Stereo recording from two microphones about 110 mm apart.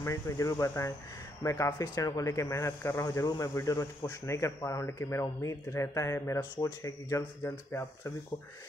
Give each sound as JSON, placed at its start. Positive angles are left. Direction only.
{"t": 0.0, "sound": "speech", "side_deg": 30}